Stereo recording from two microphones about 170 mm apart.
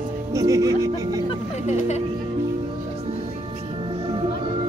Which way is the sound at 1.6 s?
40° left (ahead or behind).